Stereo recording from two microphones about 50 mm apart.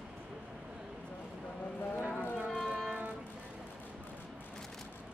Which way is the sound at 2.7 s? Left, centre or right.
Right.